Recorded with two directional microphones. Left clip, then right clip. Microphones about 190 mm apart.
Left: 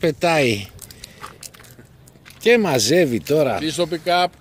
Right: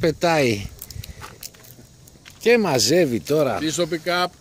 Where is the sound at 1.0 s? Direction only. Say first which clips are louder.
Left 3 dB; 50° right (ahead or behind).